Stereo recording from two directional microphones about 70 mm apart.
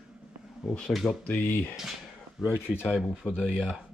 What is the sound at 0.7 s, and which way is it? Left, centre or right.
Speech, centre.